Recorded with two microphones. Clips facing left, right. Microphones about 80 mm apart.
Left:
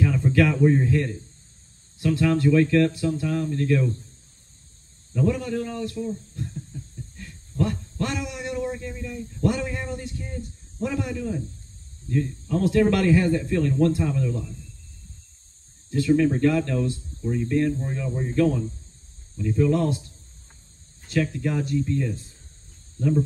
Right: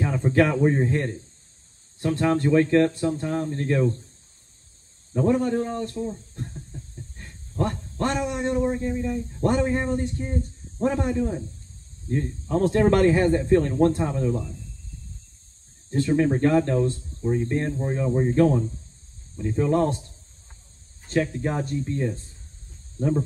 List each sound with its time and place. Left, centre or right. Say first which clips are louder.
0.0 s speech: even; right
5.1 s speech: right 3 dB; right
15.9 s speech: left 1 dB; right
21.1 s speech: even; right